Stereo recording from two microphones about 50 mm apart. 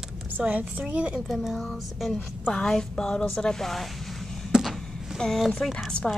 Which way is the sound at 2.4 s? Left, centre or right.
Centre.